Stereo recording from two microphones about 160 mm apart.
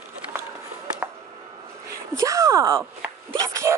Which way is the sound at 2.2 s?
20° right (ahead or behind).